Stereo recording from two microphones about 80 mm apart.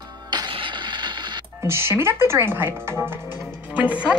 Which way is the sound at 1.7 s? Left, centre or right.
Right.